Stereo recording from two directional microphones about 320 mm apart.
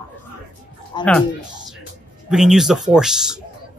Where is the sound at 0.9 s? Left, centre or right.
Centre.